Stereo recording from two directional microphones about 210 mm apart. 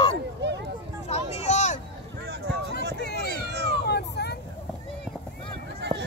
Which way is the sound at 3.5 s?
55° right (ahead or behind).